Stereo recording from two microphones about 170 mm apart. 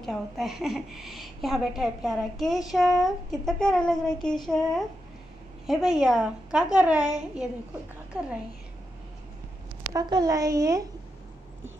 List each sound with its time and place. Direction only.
0.0 s a woman's voice: centre (ahead or behind)
5.7 s a woman's voice: 5° right (ahead or behind)
9.9 s a woman's voice: 25° right (ahead or behind)